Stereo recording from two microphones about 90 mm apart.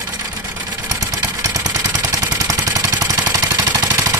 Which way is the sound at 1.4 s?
40° right (ahead or behind).